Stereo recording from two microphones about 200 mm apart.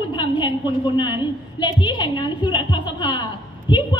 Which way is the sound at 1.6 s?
20° left (ahead or behind).